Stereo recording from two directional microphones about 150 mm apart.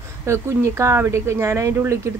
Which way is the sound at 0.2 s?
20° right (ahead or behind).